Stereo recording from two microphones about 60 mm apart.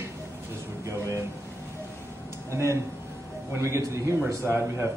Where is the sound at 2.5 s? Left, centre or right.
Right.